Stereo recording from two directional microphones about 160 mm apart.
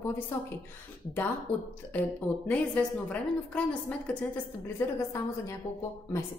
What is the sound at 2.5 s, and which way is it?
A woman's voice, 10° left (ahead or behind).